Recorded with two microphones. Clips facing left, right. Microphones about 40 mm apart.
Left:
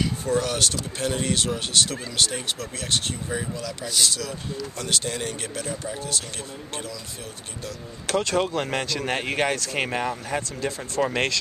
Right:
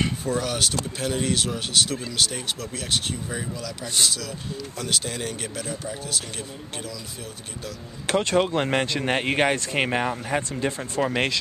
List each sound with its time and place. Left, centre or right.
0.2 s speech: centre
8.1 s speech: right